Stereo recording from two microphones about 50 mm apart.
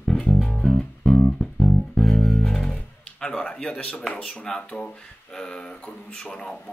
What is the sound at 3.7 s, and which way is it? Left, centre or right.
Speech, left.